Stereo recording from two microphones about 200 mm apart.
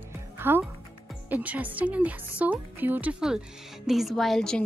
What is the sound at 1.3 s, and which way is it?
A woman's voice, 10° right (ahead or behind).